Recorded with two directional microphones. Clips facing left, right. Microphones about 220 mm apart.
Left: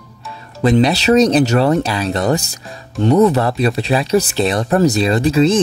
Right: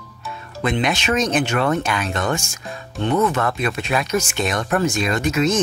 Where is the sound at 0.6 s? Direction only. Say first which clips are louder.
Left 8 dB; 35° left (ahead or behind).